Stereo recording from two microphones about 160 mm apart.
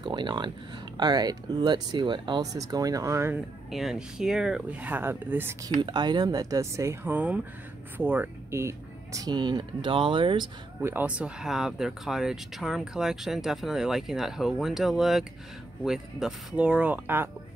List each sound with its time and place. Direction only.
0.0 s speech: 30° right (ahead or behind)
3.7 s speech: centre (ahead or behind)
5.8 s speech: 30° right (ahead or behind)
10.8 s speech: 15° right (ahead or behind)